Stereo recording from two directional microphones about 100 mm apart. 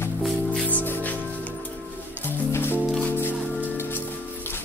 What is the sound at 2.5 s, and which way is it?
Music, 25° left (ahead or behind).